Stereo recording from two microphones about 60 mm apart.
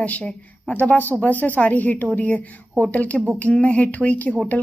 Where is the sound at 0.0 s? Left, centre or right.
Left.